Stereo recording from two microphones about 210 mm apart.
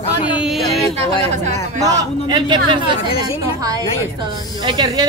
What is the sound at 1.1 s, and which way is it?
Speech, 35° right (ahead or behind).